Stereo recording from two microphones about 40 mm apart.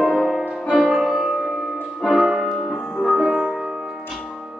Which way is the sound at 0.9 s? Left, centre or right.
Centre.